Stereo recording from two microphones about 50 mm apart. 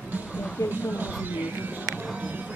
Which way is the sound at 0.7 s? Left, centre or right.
Right.